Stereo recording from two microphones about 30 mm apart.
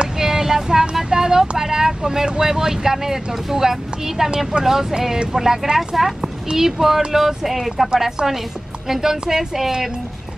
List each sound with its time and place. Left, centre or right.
0.2 s vehicle: centre
1.6 s a woman's voice: centre
4.5 s speech: right
5.3 s a woman's voice: centre